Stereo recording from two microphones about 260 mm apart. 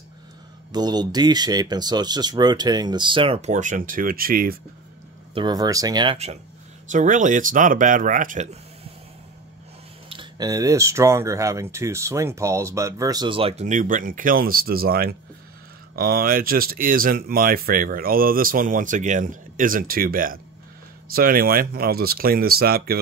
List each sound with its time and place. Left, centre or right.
0.7 s speech: centre; by 4.6 s right
5.3 s speech: centre
10.0 s speech: centre; by 22.9 s right